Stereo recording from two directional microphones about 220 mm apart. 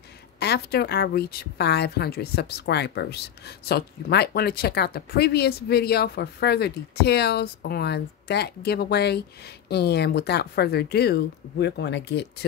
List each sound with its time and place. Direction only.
0.4 s a woman's voice: 50° left (ahead or behind)